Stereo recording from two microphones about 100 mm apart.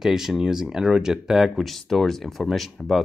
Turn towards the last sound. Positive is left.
turn(degrees=0)  # may be behind; listen again after turning